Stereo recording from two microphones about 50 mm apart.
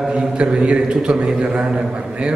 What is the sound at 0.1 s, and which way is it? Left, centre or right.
A man's voice, right.